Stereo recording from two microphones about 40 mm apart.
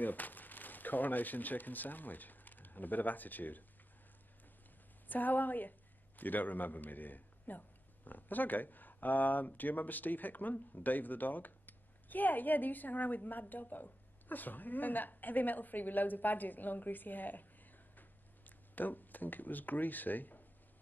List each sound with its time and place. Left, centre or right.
0.0 s speech: left
5.0 s a man's voice: left